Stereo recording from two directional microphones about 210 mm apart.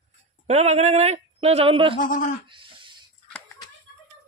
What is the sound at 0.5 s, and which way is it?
A woman's voice, 30° right (ahead or behind).